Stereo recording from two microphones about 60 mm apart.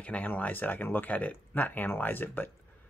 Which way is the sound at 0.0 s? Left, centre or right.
Left.